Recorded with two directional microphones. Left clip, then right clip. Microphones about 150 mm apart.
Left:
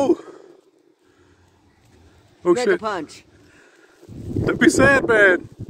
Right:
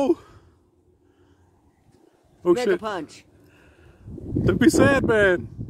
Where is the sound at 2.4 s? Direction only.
25° right (ahead or behind).